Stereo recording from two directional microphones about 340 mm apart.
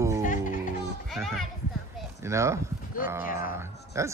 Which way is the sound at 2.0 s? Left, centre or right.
Centre.